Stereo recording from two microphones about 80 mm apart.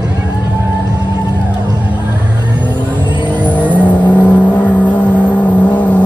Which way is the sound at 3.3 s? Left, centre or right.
Left.